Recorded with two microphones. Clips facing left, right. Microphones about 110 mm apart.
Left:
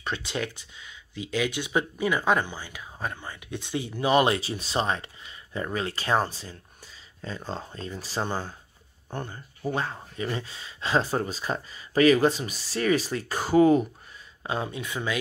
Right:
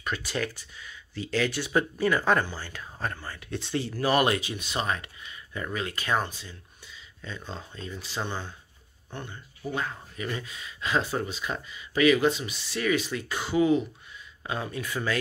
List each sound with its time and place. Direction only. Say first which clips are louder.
0.0 s speech: even; 25° left (ahead or behind); by 9.7 s 40° left (ahead or behind)
9.8 s speech: right 1 dB; 30° left (ahead or behind)
14.4 s speech: left 2 dB; 25° left (ahead or behind)